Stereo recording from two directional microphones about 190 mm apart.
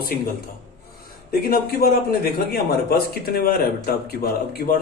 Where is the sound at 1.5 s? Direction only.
50° left (ahead or behind).